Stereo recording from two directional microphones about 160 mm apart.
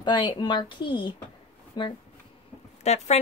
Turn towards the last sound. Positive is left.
turn(degrees=45)  # may be behind; listen again after turning